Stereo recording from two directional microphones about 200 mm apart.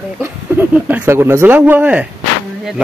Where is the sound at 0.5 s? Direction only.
10° right (ahead or behind).